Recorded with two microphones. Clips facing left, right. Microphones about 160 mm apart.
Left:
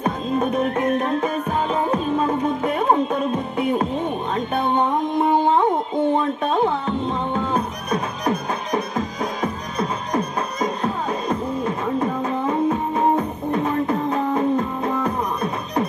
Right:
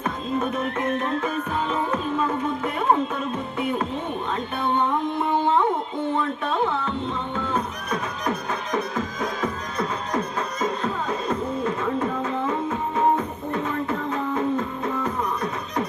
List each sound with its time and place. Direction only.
0.0 s music: 15° left (ahead or behind)
8.3 s music: 15° left (ahead or behind)
12.2 s music: 35° left (ahead or behind)